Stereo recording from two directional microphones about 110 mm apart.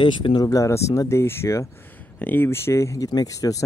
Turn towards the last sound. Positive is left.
turn(degrees=30)  # may be behind; listen again after turning